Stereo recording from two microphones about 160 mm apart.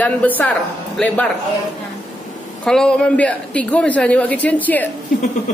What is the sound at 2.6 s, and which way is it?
A man's voice, 5° left (ahead or behind).